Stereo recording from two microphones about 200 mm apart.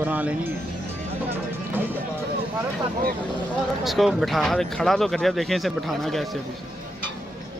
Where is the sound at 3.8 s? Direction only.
Centre (ahead or behind).